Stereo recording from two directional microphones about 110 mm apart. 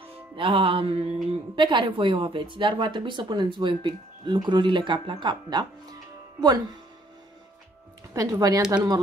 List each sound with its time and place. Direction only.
0.4 s speech: 50° right (ahead or behind)
1.5 s speech: 45° right (ahead or behind)
8.1 s speech: 30° right (ahead or behind)